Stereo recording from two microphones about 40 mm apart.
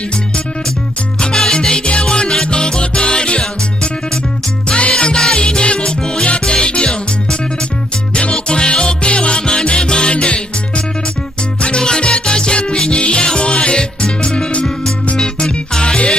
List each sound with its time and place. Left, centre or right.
1.3 s music: centre
8.1 s music: left
11.6 s music: left
14.5 s music: left
15.1 s music: centre
15.8 s music: left